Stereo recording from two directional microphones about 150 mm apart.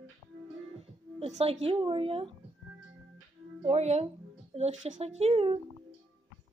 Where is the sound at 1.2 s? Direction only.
45° right (ahead or behind).